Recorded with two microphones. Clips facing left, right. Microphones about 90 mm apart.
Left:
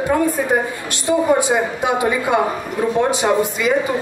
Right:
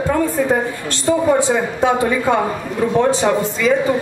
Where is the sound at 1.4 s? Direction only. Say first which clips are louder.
Right 2 dB; 15° left (ahead or behind).